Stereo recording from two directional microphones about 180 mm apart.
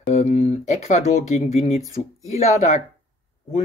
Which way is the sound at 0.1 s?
40° left (ahead or behind).